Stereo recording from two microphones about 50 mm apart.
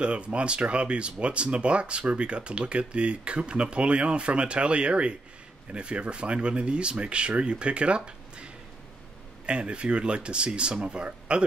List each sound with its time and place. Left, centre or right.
0.0 s speech: right
9.5 s speech: right